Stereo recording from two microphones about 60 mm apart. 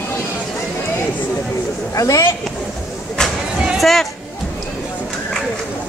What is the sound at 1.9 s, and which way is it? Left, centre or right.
Speech, left.